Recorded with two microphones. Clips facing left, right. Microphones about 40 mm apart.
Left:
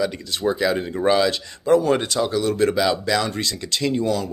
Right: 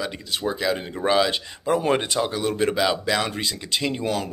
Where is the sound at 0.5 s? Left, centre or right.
Centre.